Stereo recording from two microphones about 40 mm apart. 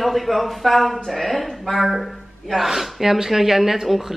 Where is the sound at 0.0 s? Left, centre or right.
Centre.